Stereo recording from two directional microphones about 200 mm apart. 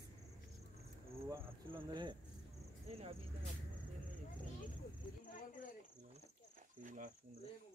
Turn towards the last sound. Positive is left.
turn(degrees=-40)  # may be behind; listen again after turning